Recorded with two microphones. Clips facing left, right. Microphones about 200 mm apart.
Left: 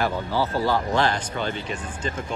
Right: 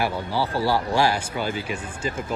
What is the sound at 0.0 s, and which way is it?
Speech, 15° right (ahead or behind).